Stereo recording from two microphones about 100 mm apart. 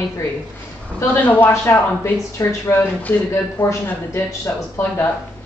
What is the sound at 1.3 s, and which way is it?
Speech, 20° left (ahead or behind).